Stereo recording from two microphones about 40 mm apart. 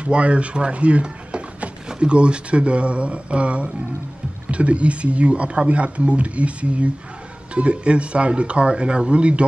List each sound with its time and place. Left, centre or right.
0.0 s speech: right